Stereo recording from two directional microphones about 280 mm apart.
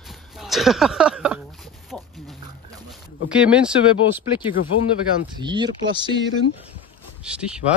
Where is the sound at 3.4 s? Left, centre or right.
Centre.